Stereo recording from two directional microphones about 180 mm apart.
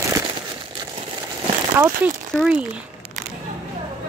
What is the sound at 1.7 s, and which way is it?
Speech, 10° right (ahead or behind).